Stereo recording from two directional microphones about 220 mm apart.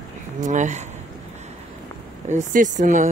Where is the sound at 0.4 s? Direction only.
35° right (ahead or behind).